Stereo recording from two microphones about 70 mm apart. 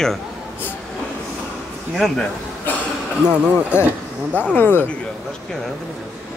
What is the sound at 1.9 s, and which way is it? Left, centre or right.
Speech, centre.